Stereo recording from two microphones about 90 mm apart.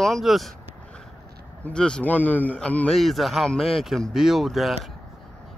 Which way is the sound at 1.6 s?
10° left (ahead or behind).